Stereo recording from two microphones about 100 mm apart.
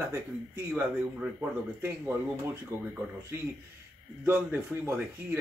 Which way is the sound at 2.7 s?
30° right (ahead or behind).